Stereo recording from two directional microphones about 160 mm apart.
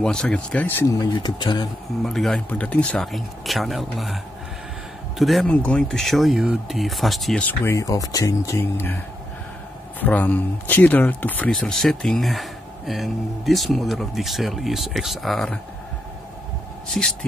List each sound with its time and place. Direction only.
0.0 s speech: 5° left (ahead or behind)
1.2 s speech: 25° left (ahead or behind)
2.0 s speech: centre (ahead or behind)
5.2 s speech: centre (ahead or behind)